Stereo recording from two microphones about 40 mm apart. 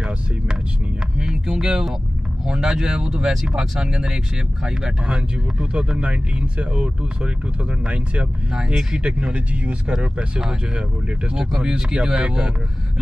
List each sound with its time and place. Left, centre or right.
1.1 s speech: centre
5.0 s speech: right
9.9 s speech: centre
11.6 s speech: centre